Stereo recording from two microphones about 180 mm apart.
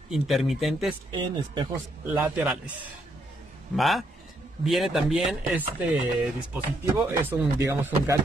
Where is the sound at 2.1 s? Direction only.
5° right (ahead or behind).